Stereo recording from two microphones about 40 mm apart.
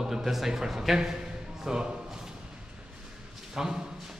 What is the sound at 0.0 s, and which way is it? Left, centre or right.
A man's voice, centre.